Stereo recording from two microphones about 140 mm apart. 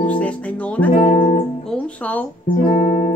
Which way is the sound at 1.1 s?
65° left (ahead or behind).